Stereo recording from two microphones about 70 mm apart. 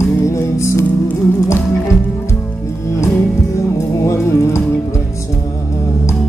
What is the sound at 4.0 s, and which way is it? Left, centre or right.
Music, left.